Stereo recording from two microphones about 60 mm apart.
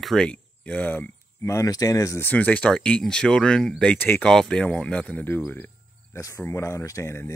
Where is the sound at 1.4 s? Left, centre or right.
Left.